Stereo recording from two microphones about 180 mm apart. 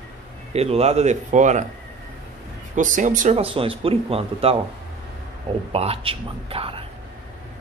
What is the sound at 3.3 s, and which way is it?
Speech, 30° right (ahead or behind).